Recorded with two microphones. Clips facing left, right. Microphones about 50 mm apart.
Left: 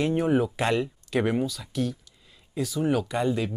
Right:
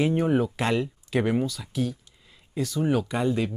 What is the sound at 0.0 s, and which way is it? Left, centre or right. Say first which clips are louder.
Speech: even; centre.